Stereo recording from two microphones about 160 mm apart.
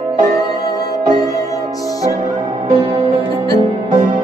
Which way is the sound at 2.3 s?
50° right (ahead or behind).